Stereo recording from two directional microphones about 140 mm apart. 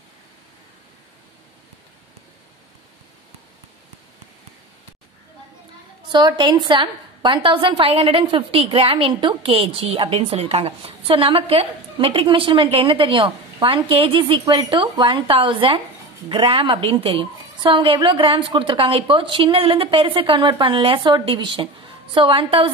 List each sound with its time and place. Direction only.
6.1 s a woman's voice: 30° right (ahead or behind)